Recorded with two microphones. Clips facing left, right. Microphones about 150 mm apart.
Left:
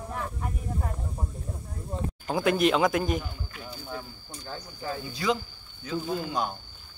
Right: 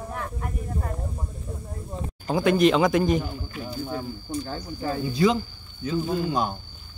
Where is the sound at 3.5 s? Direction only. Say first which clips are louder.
Right 8 dB; 30° right (ahead or behind).